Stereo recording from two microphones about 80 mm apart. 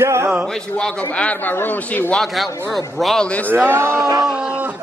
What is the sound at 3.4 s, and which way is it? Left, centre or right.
Speech, right.